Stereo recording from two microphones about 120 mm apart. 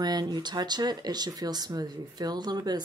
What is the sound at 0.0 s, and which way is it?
Speech, 35° right (ahead or behind).